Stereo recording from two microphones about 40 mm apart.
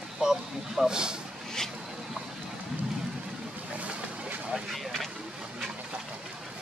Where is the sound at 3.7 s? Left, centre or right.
Right.